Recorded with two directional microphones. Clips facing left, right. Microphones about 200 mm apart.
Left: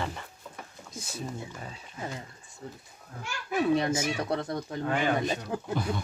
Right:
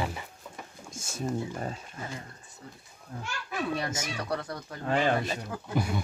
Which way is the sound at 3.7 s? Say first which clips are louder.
Left 7 dB; 25° left (ahead or behind).